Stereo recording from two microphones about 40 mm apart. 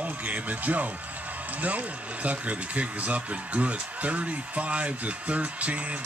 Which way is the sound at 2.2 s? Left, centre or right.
Right.